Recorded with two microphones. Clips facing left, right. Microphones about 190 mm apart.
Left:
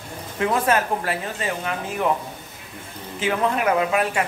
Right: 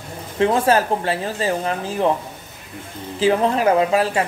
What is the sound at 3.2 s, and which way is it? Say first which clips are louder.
Speech: right 5 dB; 30° right (ahead or behind).